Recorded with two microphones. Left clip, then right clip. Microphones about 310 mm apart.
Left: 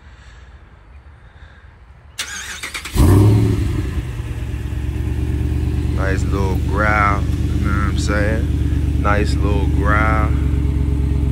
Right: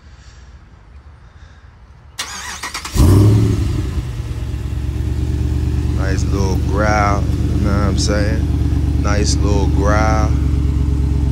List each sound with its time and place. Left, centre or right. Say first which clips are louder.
2.1 s vehicle: right 1 dB; right
2.9 s vehicle: even; centre